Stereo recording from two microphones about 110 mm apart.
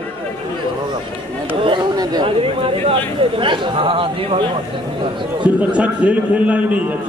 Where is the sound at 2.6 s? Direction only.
55° right (ahead or behind).